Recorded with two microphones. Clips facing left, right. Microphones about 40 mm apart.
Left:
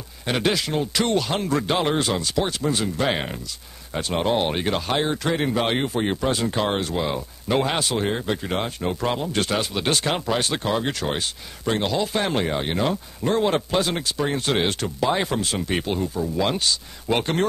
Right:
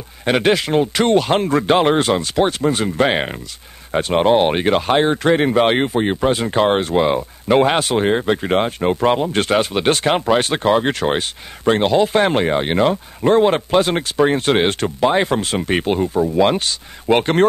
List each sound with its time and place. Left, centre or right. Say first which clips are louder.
0.2 s speech: right 7 dB; right
5.9 s speech: right 6 dB; right